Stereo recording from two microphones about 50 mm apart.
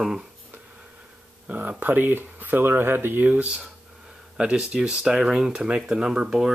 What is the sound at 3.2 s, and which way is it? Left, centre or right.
Speech, right.